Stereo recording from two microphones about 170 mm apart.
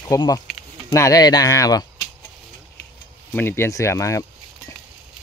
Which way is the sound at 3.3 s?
15° left (ahead or behind).